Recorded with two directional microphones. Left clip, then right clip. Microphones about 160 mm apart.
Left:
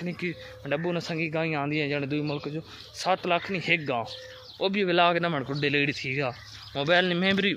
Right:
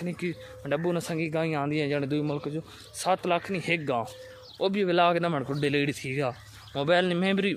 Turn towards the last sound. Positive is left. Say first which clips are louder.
# left 2 dB
turn(degrees=-5)  # may be behind; listen again after turning